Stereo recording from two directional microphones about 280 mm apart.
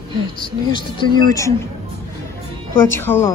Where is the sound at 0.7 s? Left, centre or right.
Centre.